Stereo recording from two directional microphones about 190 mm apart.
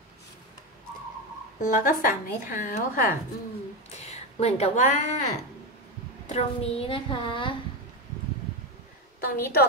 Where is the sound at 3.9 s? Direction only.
35° left (ahead or behind).